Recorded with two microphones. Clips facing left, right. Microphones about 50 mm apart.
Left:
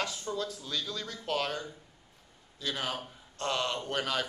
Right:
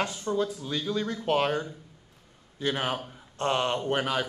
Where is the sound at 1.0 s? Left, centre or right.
Right.